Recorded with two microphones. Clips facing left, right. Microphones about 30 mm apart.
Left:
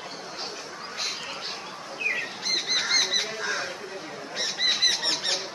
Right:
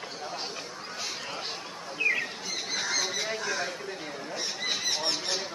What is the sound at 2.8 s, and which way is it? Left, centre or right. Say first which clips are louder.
Goose: left 4 dB; left.